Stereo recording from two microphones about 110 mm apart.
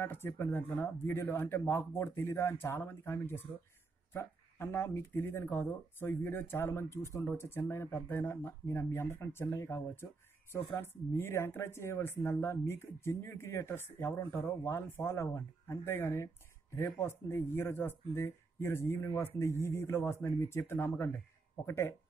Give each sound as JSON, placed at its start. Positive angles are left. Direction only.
{"t": 0.0, "sound": "speech", "side_deg": 20}